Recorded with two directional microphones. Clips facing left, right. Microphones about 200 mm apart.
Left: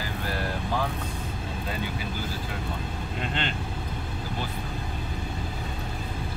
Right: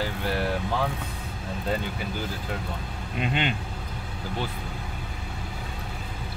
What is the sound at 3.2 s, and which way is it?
Speech, 15° right (ahead or behind).